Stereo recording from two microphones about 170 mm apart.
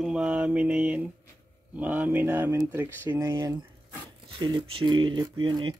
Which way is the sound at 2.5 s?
20° right (ahead or behind).